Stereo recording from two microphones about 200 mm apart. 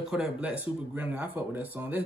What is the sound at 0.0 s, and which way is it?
Speech, 5° right (ahead or behind).